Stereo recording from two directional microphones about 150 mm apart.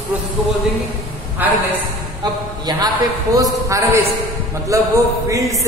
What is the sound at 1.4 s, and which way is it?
Speech, 15° right (ahead or behind).